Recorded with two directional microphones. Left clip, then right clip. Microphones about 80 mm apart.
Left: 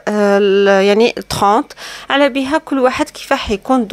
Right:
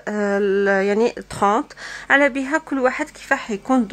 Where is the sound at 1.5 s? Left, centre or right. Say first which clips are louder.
Left 6 dB; left.